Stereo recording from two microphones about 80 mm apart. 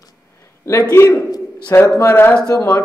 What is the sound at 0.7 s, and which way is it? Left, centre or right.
Speech, left.